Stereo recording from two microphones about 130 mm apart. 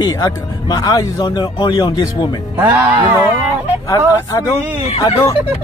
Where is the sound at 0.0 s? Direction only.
30° left (ahead or behind).